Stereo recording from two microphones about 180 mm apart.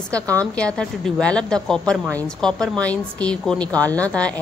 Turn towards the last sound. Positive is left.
turn(degrees=5)  # may be behind; listen again after turning